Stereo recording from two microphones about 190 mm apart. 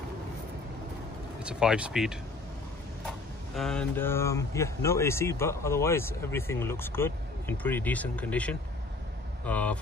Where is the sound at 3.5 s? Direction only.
5° left (ahead or behind).